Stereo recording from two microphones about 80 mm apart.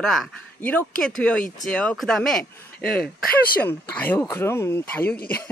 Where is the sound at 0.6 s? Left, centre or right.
Centre.